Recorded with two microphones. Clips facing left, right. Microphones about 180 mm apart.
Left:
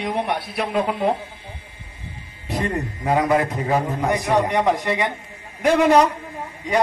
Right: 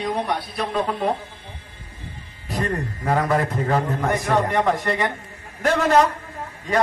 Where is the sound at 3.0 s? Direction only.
15° left (ahead or behind).